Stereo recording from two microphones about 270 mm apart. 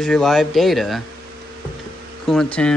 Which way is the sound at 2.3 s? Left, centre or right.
Centre.